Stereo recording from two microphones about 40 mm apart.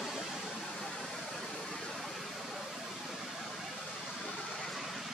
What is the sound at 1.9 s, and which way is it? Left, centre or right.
Vehicle, centre.